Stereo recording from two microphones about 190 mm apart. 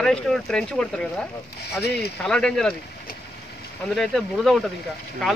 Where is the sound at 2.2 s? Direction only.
5° left (ahead or behind).